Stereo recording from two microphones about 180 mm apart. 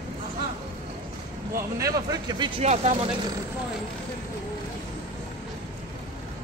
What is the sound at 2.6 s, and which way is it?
Speech, 40° right (ahead or behind).